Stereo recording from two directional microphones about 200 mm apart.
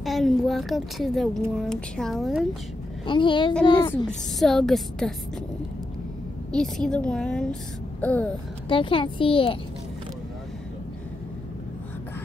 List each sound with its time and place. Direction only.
0.0 s a woman's voice: centre (ahead or behind)
3.1 s a child's voice: 25° left (ahead or behind)
4.4 s a woman's voice: centre (ahead or behind)
6.5 s a woman's voice: 5° left (ahead or behind)
8.0 s a sound: 10° left (ahead or behind)
8.6 s a child's voice: 25° left (ahead or behind)